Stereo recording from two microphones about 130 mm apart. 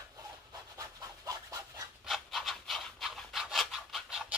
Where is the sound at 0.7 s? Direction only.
25° right (ahead or behind).